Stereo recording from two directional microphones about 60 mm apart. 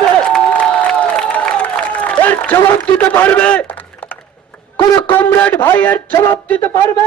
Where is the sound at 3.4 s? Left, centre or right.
Left.